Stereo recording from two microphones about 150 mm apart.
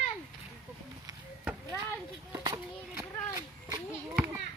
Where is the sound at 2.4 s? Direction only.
25° right (ahead or behind).